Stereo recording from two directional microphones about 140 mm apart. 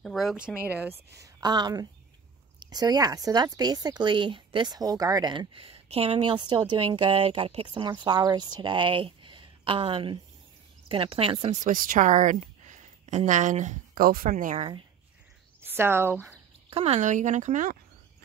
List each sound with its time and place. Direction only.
0.0 s a woman's voice: centre (ahead or behind); by 14.7 s 65° right (ahead or behind)
15.6 s speech: 15° right (ahead or behind)
16.7 s speech: 50° right (ahead or behind)